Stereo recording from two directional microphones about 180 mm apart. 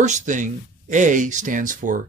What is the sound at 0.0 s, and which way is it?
Speech, 40° right (ahead or behind).